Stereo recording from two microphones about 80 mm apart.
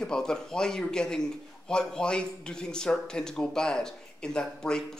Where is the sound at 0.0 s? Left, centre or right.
Centre.